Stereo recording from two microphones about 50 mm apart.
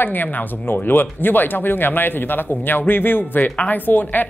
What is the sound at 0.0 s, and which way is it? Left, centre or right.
Speech, left.